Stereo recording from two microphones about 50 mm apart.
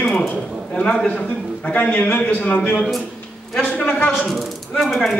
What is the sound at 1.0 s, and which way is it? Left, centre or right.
A man's voice, left.